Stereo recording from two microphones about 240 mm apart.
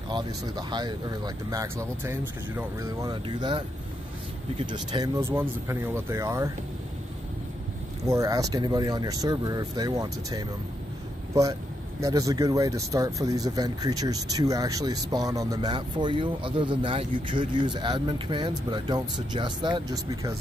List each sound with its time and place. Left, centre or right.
0.1 s speech: centre
8.0 s speech: centre
12.0 s speech: centre